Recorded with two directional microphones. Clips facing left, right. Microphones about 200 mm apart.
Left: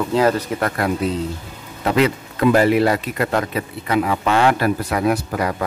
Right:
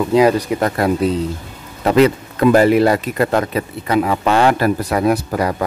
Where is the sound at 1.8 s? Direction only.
40° right (ahead or behind).